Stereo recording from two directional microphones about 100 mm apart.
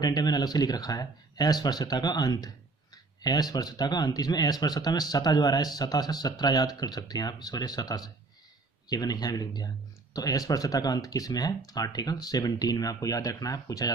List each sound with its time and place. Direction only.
0.0 s speech: 40° left (ahead or behind)